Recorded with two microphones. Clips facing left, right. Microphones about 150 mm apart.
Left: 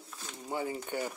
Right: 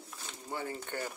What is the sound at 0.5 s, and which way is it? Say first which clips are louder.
Speech: left 4 dB; 15° left (ahead or behind).